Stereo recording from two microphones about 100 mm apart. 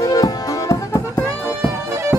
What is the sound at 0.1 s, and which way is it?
Music, 35° left (ahead or behind).